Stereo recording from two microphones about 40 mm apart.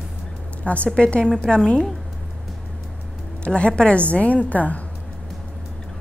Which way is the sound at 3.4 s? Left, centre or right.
Left.